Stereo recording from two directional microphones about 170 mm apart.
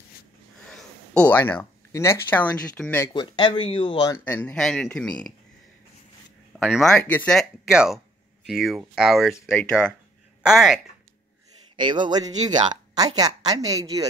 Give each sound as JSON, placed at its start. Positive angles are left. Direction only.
{"t": 0.7, "sound": "speech", "side_deg": 5}
{"t": 3.1, "sound": "speech", "side_deg": 30}
{"t": 4.2, "sound": "speech", "side_deg": 10}
{"t": 6.6, "sound": "speech", "side_deg": 0}
{"t": 11.7, "sound": "a woman's voice", "side_deg": -25}